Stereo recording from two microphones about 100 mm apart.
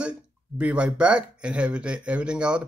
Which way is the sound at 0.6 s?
15° right (ahead or behind).